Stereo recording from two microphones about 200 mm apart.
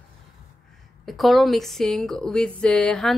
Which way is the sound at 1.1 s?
Centre (ahead or behind).